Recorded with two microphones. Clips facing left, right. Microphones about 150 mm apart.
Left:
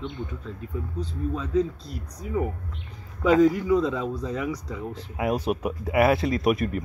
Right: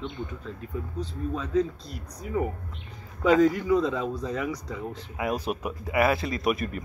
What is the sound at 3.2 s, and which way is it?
Speech, 5° left (ahead or behind).